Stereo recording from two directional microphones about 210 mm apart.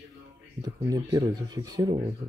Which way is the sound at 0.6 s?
15° right (ahead or behind).